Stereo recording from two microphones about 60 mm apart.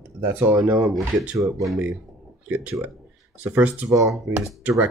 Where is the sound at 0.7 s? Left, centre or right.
Centre.